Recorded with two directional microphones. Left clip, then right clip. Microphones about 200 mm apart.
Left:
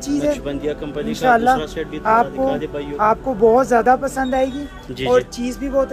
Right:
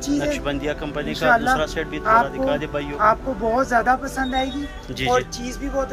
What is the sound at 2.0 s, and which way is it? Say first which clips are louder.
Speech: left 1 dB; 30° left (ahead or behind).